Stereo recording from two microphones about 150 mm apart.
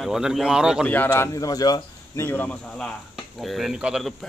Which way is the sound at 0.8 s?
10° left (ahead or behind).